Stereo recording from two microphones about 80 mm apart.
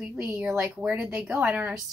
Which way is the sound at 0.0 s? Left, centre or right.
Centre.